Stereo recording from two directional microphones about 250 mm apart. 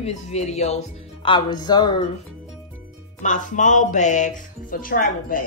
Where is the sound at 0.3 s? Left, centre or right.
Left.